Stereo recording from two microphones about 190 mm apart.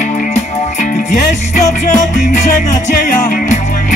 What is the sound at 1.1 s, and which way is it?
Music, 45° left (ahead or behind).